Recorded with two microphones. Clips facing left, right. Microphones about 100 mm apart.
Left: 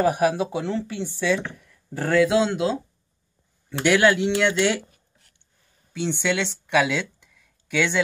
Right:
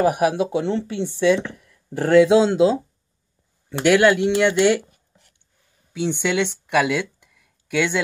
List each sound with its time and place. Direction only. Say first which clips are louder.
0.0 s speech: right 2 dB; 15° right (ahead or behind); by 2.7 s 30° right (ahead or behind)
3.8 s speech: right 3 dB; 10° right (ahead or behind)
5.9 s speech: right 3 dB; 10° right (ahead or behind)